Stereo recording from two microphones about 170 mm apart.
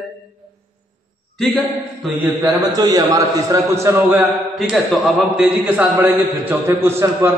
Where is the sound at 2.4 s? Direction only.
20° right (ahead or behind).